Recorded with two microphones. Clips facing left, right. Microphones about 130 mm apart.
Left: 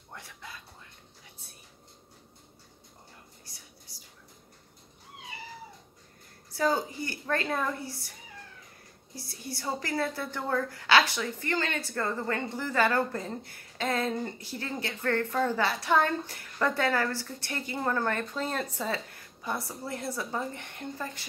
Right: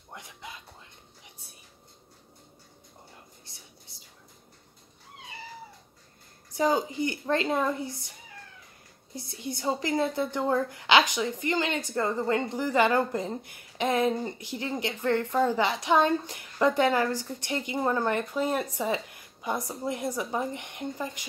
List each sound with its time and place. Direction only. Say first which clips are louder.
0.1 s a sound: right 2 dB; 15° right (ahead or behind)
3.4 s whispering: even; 25° right (ahead or behind)
6.5 s speech: right 2 dB; 15° right (ahead or behind)
9.1 s speech: right 4 dB; 20° right (ahead or behind)